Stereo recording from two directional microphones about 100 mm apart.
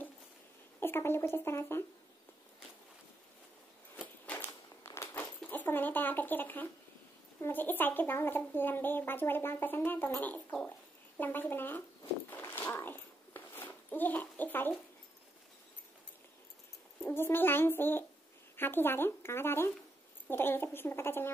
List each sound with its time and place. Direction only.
0.7 s speech: 25° left (ahead or behind)
3.9 s a sound: 20° left (ahead or behind)
7.4 s speech: 20° left (ahead or behind)
11.1 s speech: 20° left (ahead or behind)
12.3 s dog: 20° left (ahead or behind)
17.1 s speech: 20° left (ahead or behind)